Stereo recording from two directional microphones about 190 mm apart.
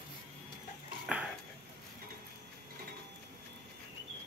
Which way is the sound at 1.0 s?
5° right (ahead or behind).